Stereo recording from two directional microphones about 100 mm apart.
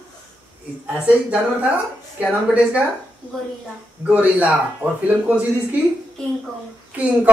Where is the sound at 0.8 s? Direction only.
15° right (ahead or behind).